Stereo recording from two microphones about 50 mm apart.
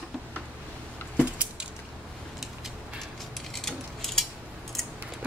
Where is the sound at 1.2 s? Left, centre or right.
Right.